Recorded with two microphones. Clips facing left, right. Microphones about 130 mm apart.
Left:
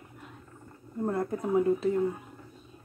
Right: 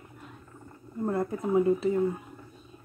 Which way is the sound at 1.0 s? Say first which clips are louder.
Right 1 dB; 5° right (ahead or behind).